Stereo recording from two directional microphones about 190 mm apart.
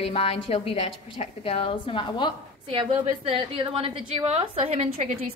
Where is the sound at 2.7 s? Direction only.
30° right (ahead or behind).